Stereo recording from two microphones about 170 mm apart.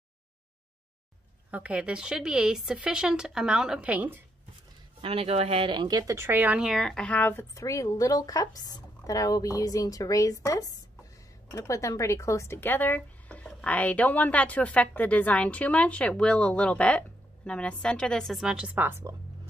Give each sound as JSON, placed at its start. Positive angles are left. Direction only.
{"t": 1.5, "sound": "speech", "side_deg": -10}
{"t": 5.0, "sound": "speech", "side_deg": -35}